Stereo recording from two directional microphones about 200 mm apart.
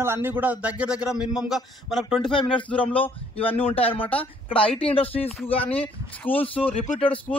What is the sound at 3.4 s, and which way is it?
Speech, 25° left (ahead or behind).